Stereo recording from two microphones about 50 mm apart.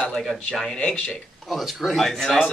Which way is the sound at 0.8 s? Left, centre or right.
Left.